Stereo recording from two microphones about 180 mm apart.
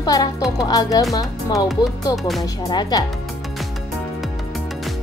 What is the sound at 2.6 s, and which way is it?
Music, 20° left (ahead or behind).